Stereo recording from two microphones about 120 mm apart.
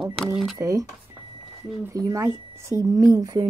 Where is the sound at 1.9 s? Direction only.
25° right (ahead or behind).